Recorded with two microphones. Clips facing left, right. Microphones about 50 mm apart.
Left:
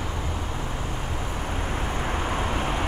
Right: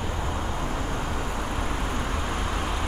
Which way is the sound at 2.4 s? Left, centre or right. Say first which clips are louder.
Left 2 dB; left.